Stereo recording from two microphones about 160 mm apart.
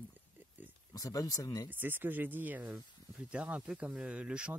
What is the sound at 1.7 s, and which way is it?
Speech, 10° right (ahead or behind).